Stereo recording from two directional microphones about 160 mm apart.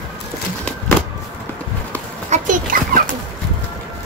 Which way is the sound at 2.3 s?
55° right (ahead or behind).